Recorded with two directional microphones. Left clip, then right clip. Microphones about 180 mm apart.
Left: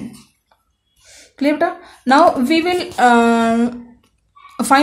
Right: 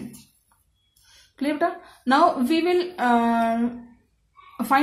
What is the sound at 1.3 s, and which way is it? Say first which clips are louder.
A woman's voice: left 7 dB; 50° left (ahead or behind).